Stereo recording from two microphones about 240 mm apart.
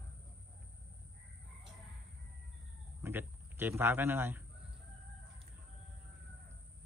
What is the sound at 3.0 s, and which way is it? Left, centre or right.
A man's voice, centre.